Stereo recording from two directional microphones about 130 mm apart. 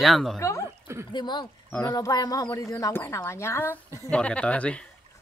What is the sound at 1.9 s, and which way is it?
Speech, 30° left (ahead or behind).